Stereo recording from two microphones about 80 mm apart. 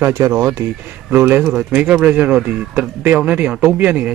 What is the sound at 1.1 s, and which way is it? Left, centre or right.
Speech, right.